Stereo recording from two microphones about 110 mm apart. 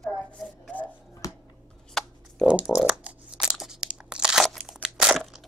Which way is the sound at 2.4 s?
10° right (ahead or behind).